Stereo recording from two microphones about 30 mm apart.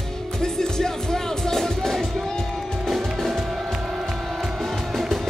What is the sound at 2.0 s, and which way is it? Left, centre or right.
Music, centre.